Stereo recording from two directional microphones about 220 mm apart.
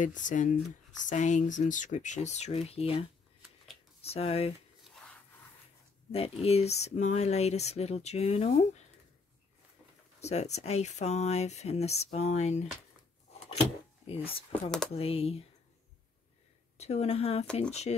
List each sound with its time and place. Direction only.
0.0 s speech: 35° left (ahead or behind)
4.1 s speech: 25° left (ahead or behind)
4.8 s a sound: 5° left (ahead or behind)
6.1 s speech: 25° left (ahead or behind)
10.2 s speech: 30° left (ahead or behind)
14.0 s speech: 25° left (ahead or behind)
14.5 s speech: 5° left (ahead or behind)
15.0 s speech: 25° left (ahead or behind)
16.7 s speech: 30° left (ahead or behind)